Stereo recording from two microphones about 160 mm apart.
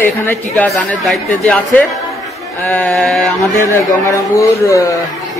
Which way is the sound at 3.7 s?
20° left (ahead or behind).